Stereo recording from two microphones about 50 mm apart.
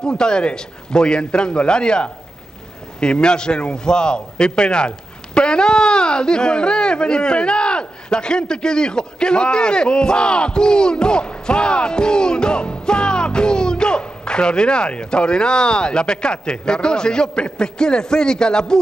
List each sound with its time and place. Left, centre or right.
0.0 s a man's voice: centre